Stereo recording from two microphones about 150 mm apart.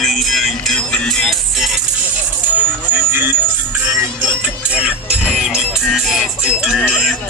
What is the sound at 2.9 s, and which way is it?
Music, 15° right (ahead or behind).